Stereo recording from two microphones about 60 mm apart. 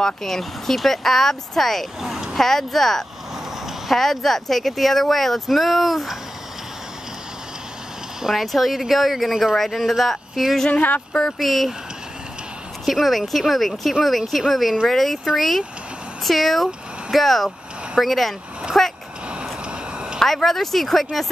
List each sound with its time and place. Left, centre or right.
0.0 s speech: centre
2.3 s speech: centre
8.2 s speech: centre
10.7 s speech: left
11.3 s speech: centre
12.8 s speech: centre
20.2 s speech: centre